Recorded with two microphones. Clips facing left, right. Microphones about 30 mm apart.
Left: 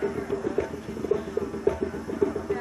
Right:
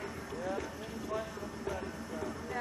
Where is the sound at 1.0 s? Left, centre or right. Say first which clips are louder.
Left 12 dB; centre.